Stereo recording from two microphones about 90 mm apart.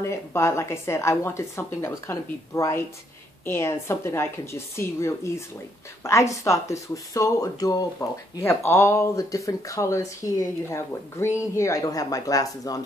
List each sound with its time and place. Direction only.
0.0 s speech: 30° left (ahead or behind)